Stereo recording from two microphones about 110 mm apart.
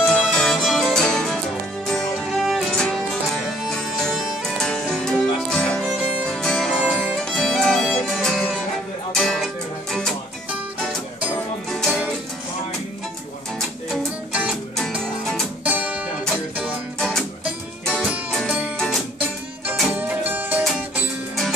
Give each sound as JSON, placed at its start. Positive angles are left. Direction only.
{"t": 0.0, "sound": "music", "side_deg": 0}
{"t": 5.9, "sound": "music", "side_deg": -5}
{"t": 6.8, "sound": "music", "side_deg": -10}
{"t": 7.2, "sound": "music", "side_deg": 5}
{"t": 14.3, "sound": "music", "side_deg": -5}
{"t": 15.6, "sound": "music", "side_deg": -10}
{"t": 17.8, "sound": "music", "side_deg": 0}
{"t": 19.9, "sound": "music", "side_deg": -15}